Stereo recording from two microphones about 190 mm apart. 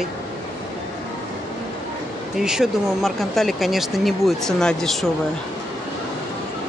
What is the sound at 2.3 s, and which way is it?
Speech, centre (ahead or behind).